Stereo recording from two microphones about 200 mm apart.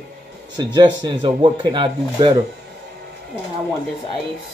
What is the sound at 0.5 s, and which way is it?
Speech, 20° right (ahead or behind).